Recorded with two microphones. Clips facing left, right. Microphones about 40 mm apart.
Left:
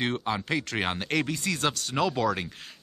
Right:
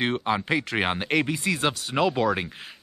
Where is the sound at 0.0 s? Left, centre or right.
Centre.